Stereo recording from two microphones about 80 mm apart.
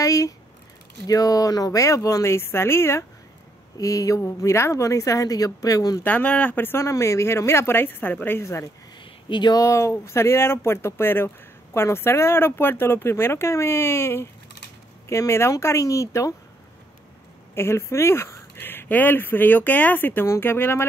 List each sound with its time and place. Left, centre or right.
0.0 s speech: left
3.7 s speech: left
6.0 s speech: centre
8.4 s speech: left
9.0 s a sound: left
9.5 s speech: left
17.6 s speech: left